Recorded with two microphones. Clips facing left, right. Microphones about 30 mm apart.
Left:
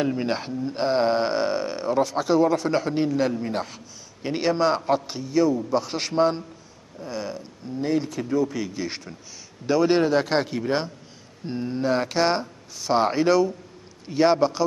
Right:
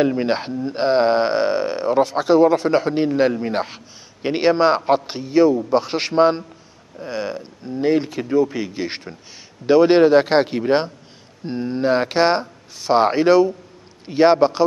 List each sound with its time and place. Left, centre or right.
0.0 s a man's voice: right